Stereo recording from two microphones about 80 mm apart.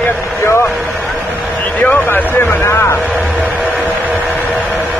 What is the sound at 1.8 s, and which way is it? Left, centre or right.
Speech, left.